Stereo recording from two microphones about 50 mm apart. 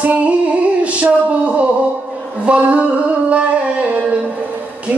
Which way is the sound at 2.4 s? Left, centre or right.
Right.